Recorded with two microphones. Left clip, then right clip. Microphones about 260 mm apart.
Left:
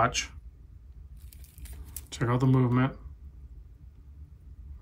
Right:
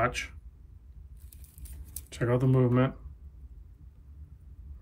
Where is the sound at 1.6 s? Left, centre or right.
Centre.